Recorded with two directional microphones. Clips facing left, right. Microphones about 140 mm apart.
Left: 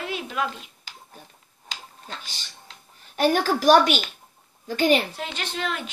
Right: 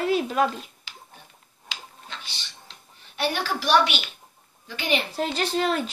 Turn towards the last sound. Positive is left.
turn(degrees=-35)  # may be behind; listen again after turning